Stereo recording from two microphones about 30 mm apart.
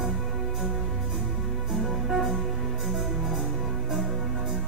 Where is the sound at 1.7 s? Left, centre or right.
Centre.